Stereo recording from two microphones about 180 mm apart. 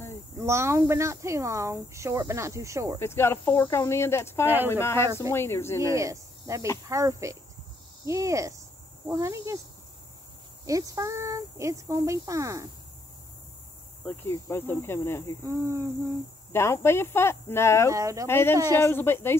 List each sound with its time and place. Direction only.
0.4 s speech: 15° right (ahead or behind)
3.0 s speech: 15° left (ahead or behind)
5.0 s speech: 15° right (ahead or behind)
5.3 s speech: 15° left (ahead or behind)
5.8 s speech: 15° right (ahead or behind)
10.7 s speech: 20° right (ahead or behind)
14.0 s speech: 15° left (ahead or behind)
15.4 s speech: 15° right (ahead or behind)
16.5 s speech: 15° left (ahead or behind)
17.9 s speech: 15° right (ahead or behind)
18.2 s speech: 15° left (ahead or behind)